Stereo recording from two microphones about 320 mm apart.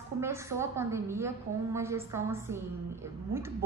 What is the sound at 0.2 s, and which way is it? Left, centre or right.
A woman's voice, centre.